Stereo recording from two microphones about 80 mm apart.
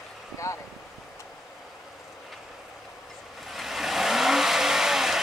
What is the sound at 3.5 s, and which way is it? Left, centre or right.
Vehicle, centre.